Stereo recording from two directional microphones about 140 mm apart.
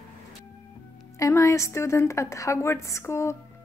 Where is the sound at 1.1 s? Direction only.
20° left (ahead or behind).